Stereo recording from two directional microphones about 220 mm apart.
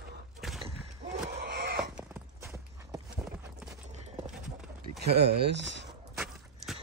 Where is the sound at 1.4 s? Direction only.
50° right (ahead or behind).